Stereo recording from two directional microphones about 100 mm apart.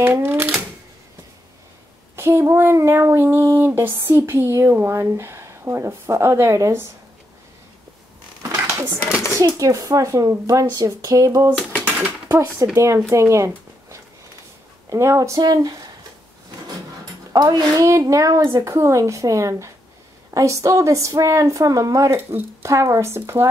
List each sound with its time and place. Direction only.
0.0 s speech: 20° right (ahead or behind)
2.1 s a sound: 25° right (ahead or behind)
9.4 s a woman's voice: 35° right (ahead or behind)
12.7 s a sound: 30° right (ahead or behind)
13.1 s a woman's voice: 30° right (ahead or behind)
17.3 s a woman's voice: 45° right (ahead or behind); by 23.5 s 25° right (ahead or behind)